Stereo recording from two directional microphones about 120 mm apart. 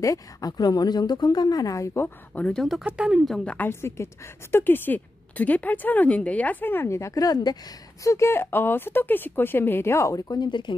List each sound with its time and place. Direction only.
0.0 s speech: 30° left (ahead or behind); by 3.5 s centre (ahead or behind)
3.5 s a woman's voice: 20° left (ahead or behind)
8.0 s speech: 25° left (ahead or behind); by 10.8 s 40° left (ahead or behind)